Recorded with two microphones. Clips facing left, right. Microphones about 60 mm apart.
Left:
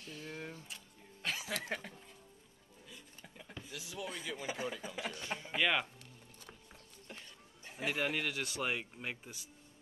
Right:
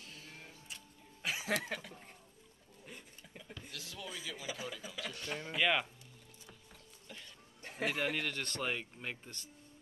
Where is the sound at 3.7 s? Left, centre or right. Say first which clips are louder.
Left 5 dB; centre.